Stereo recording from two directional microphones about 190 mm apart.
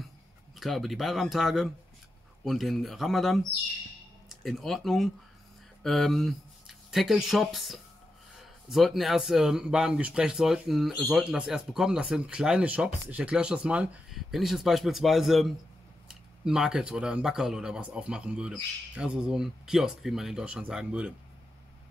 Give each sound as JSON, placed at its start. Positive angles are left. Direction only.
{"t": 0.6, "sound": "speech", "side_deg": 0}